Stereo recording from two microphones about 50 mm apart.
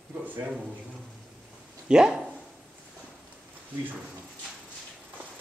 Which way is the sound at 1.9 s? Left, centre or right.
Centre.